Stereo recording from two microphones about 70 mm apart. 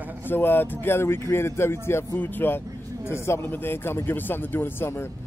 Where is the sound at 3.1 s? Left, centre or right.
Left.